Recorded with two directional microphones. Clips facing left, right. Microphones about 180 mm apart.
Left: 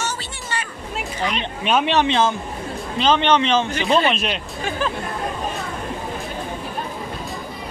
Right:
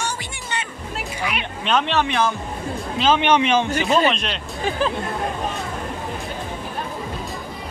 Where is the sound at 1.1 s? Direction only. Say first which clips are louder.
Left 3 dB; 10° right (ahead or behind).